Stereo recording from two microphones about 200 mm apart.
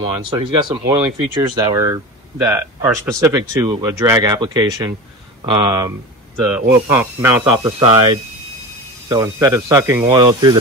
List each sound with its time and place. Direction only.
0.8 s speech: 20° right (ahead or behind)